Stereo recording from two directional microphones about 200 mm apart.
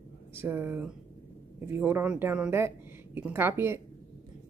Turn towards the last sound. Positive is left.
turn(degrees=-10)  # may be behind; listen again after turning